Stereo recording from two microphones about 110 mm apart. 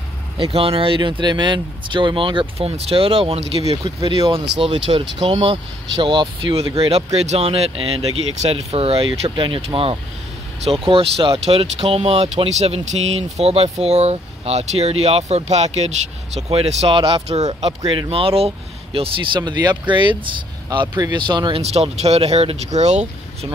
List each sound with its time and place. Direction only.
0.4 s speech: 60° right (ahead or behind)
4.0 s speech: 60° right (ahead or behind); by 15.9 s 85° right
16.3 s speech: 65° right (ahead or behind); by 21.5 s 45° right (ahead or behind)
21.5 s speech: 70° right (ahead or behind); by 23.5 s 90° right